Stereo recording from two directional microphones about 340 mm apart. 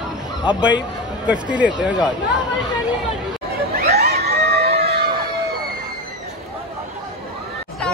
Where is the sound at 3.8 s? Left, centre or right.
Right.